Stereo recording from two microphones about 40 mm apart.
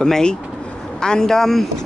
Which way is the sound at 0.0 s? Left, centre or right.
Centre.